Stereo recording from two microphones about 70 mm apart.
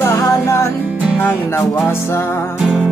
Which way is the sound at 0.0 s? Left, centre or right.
Left.